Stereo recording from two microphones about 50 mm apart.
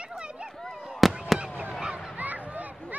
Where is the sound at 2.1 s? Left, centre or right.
Right.